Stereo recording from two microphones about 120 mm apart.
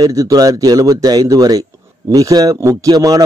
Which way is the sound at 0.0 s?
30° right (ahead or behind).